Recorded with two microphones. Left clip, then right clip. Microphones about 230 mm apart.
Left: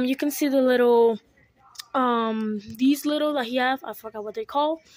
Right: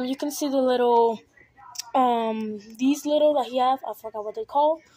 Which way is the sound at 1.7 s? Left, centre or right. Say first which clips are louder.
Right 2 dB; left.